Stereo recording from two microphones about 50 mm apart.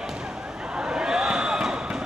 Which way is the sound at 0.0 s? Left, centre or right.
Centre.